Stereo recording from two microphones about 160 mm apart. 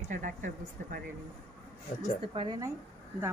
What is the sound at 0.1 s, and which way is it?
Speech, 55° right (ahead or behind).